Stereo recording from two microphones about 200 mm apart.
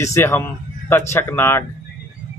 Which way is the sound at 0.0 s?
15° left (ahead or behind).